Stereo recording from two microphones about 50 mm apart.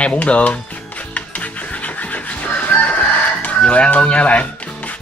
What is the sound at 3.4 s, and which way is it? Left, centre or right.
Speech, left.